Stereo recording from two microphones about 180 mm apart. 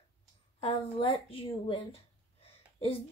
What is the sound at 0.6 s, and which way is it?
A woman's voice, 35° left (ahead or behind).